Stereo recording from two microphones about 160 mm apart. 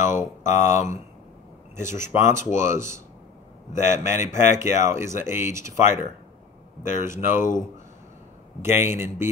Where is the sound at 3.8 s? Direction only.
15° right (ahead or behind).